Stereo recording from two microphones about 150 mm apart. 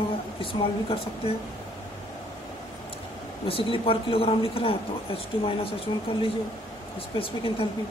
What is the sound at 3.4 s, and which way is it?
A woman's voice, 40° left (ahead or behind).